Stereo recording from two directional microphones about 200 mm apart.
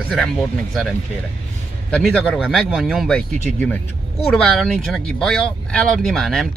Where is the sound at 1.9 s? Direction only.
5° left (ahead or behind).